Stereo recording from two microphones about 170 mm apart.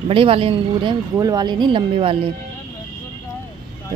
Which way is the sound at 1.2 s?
20° right (ahead or behind).